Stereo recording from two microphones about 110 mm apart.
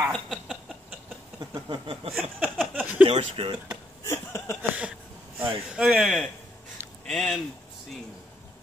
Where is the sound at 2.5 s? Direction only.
Centre (ahead or behind).